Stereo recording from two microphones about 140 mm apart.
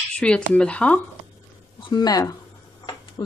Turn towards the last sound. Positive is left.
turn(degrees=25)  # may be behind; listen again after turning